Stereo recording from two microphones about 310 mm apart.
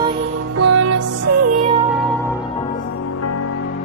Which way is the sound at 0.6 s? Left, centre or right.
Right.